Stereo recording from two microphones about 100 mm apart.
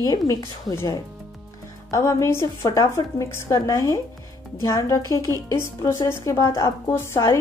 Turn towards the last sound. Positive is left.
turn(degrees=30)  # may be behind; listen again after turning